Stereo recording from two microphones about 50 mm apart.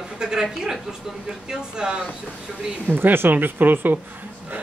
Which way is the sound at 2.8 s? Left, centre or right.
Right.